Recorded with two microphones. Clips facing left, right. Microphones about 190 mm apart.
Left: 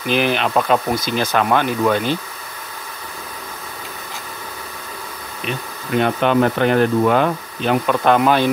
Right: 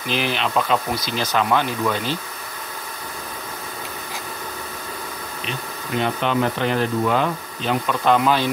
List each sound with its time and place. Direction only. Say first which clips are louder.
0.1 s speech: left 5 dB; 55° left (ahead or behind)
5.9 s speech: left 5 dB; 55° left (ahead or behind)